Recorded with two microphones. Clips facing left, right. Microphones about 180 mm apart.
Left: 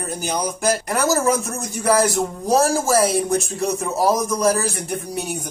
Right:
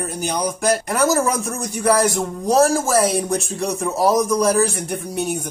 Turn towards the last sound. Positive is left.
turn(degrees=0)  # may be behind; listen again after turning